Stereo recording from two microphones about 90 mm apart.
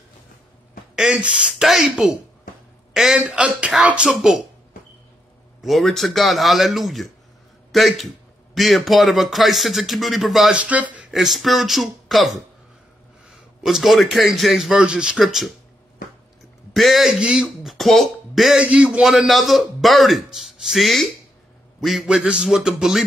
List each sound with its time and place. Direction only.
1.1 s a man's voice: 10° right (ahead or behind)
5.6 s a man's voice: centre (ahead or behind)
10.6 s a man's voice: 15° right (ahead or behind)
11.1 s a man's voice: centre (ahead or behind)
13.3 s a man's voice: 5° right (ahead or behind)
16.7 s a man's voice: centre (ahead or behind)